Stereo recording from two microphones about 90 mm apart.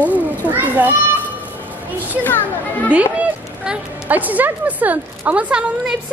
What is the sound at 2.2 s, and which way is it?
Speech, 20° left (ahead or behind).